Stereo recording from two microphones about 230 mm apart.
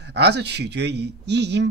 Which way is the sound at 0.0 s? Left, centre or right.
Right.